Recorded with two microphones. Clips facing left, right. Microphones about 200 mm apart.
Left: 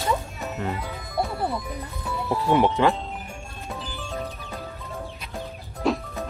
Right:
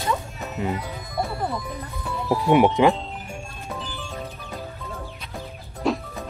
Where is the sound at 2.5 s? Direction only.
15° right (ahead or behind).